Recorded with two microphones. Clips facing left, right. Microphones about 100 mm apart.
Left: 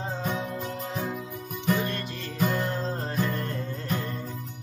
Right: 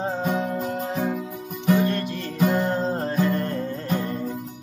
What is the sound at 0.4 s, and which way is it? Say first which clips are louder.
Music: right 7 dB; 40° right (ahead or behind).